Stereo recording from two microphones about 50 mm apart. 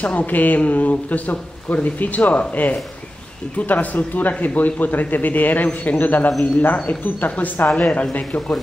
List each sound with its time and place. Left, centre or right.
0.0 s a man's voice: left